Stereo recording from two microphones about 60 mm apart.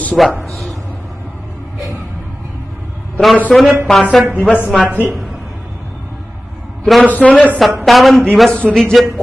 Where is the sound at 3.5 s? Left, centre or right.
Centre.